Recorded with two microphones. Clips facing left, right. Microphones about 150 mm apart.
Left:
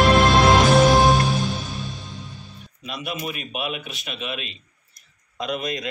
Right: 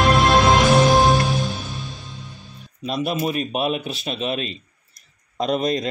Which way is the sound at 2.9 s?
35° right (ahead or behind).